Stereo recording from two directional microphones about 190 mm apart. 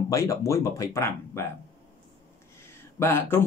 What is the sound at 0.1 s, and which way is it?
Speech, 15° left (ahead or behind).